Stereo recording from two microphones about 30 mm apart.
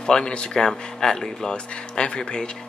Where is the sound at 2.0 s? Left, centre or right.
Left.